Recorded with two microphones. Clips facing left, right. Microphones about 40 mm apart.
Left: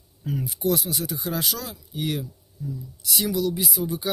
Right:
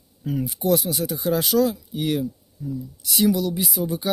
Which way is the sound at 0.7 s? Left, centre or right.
Right.